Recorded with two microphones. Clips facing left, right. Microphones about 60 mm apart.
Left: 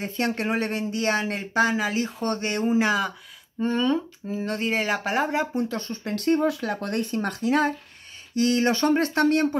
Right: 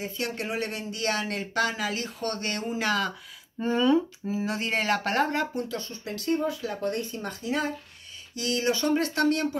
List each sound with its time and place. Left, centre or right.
0.0 s speech: left
3.5 s speech: centre
5.7 s speech: left
8.4 s speech: left